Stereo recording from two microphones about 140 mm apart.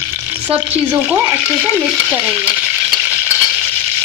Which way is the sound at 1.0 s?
15° right (ahead or behind).